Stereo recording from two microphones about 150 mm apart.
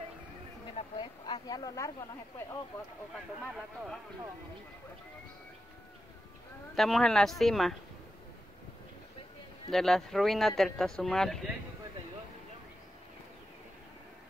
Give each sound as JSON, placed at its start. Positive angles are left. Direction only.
{"t": 0.7, "sound": "speech", "side_deg": 30}
{"t": 6.7, "sound": "speech", "side_deg": 0}
{"t": 9.7, "sound": "speech", "side_deg": 0}